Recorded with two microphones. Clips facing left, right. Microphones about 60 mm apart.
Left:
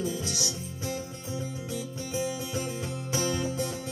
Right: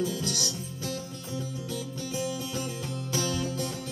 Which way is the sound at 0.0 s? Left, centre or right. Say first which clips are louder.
Right 1 dB; centre.